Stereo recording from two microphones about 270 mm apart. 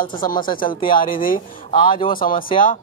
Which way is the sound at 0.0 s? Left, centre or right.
Left.